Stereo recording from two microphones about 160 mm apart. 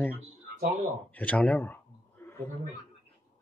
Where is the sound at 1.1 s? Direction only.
10° left (ahead or behind).